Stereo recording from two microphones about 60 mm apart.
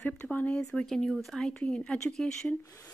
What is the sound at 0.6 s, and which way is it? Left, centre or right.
Speech, centre.